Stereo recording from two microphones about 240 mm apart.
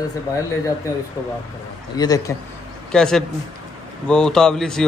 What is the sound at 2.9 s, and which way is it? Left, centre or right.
A man's voice, centre.